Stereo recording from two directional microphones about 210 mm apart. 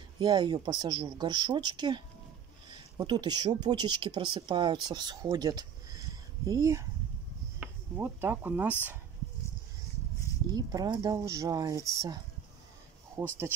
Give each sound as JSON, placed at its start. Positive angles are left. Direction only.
{"t": 0.2, "sound": "speech", "side_deg": -20}
{"t": 10.5, "sound": "speech", "side_deg": -20}